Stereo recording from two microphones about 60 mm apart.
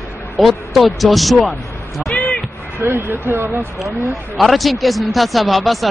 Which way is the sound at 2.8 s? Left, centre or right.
Right.